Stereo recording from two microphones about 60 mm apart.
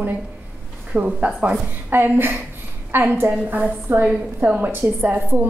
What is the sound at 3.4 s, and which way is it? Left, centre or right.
Speech, right.